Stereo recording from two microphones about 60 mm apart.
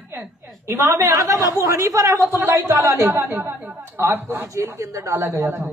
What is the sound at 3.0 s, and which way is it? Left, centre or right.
A woman's voice, right.